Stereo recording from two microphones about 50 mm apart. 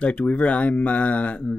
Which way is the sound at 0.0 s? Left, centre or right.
Left.